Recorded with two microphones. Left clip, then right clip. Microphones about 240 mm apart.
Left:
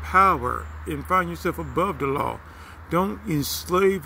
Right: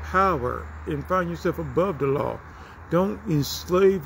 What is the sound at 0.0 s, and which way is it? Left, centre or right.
Speech, centre.